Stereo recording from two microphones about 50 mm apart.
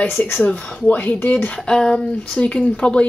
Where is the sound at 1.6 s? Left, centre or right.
Centre.